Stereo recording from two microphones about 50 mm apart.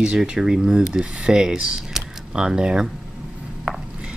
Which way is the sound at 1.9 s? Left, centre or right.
Centre.